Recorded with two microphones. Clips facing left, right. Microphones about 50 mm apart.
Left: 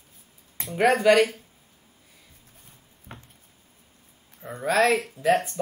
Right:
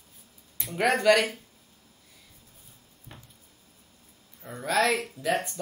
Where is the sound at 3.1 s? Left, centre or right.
Left.